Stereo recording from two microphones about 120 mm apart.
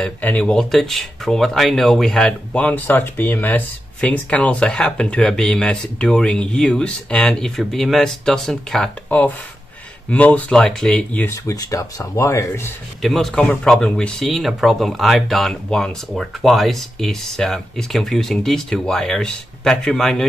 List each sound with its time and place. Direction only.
0.0 s speech: 10° left (ahead or behind)
11.2 s speech: 30° left (ahead or behind)
13.0 s speech: centre (ahead or behind)